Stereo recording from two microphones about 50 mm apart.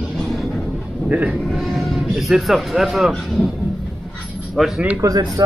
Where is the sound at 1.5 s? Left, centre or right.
Centre.